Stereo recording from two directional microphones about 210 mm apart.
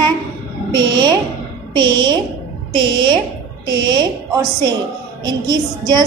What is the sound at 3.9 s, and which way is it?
A woman's voice, 20° right (ahead or behind).